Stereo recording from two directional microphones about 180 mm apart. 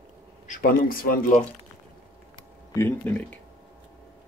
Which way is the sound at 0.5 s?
55° left (ahead or behind).